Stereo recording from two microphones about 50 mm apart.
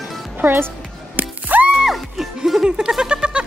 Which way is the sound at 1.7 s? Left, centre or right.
Centre.